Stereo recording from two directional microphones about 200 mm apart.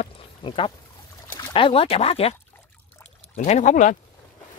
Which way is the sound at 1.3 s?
20° left (ahead or behind).